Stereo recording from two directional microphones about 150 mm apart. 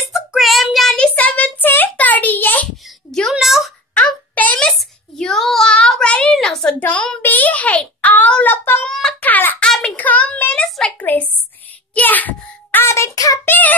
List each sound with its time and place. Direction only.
0.1 s child singing: centre (ahead or behind)
8.9 s a sound: 5° left (ahead or behind)
11.9 s child singing: 10° left (ahead or behind)
13.5 s child singing: 10° left (ahead or behind)